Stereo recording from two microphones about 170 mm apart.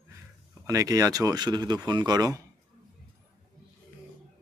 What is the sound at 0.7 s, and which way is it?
Speech, 20° right (ahead or behind).